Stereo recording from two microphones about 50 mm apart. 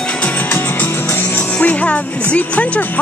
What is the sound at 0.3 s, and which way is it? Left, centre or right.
Music, left.